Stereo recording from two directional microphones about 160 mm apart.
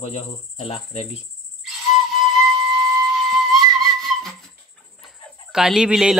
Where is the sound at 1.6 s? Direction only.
Centre (ahead or behind).